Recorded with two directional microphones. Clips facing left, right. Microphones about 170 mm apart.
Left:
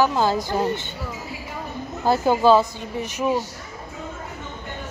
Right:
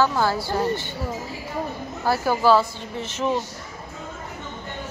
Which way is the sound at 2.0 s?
20° left (ahead or behind).